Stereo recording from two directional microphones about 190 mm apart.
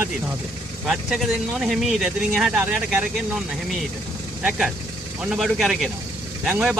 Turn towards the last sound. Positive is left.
turn(degrees=-5)  # may be behind; listen again after turning